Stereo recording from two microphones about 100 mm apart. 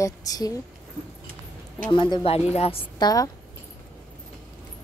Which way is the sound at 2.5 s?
90° left.